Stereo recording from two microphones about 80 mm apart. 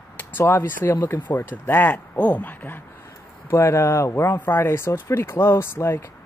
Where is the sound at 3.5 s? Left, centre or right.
Left.